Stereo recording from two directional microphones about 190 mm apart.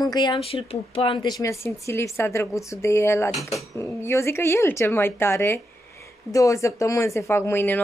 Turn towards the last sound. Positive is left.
turn(degrees=10)  # may be behind; listen again after turning